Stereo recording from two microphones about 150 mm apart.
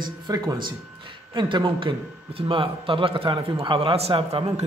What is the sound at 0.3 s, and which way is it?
Speech, 25° right (ahead or behind).